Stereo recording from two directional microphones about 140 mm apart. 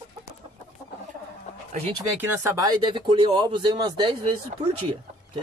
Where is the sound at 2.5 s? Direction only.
30° right (ahead or behind).